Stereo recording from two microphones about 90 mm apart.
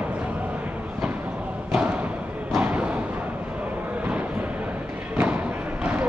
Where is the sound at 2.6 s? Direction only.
15° right (ahead or behind).